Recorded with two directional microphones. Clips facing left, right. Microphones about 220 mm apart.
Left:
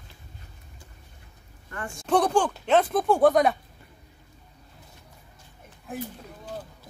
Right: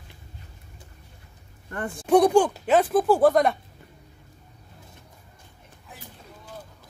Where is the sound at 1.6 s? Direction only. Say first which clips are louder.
Right 5 dB; 35° right (ahead or behind).